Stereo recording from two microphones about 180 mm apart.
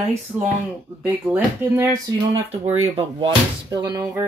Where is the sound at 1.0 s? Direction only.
10° right (ahead or behind).